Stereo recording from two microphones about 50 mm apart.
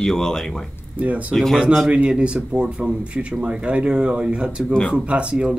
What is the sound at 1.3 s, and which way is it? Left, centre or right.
Speech, centre.